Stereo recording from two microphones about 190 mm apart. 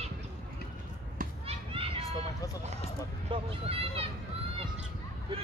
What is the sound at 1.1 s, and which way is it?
Children playing, 30° right (ahead or behind).